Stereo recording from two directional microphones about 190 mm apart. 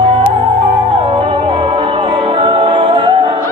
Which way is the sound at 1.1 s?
25° right (ahead or behind).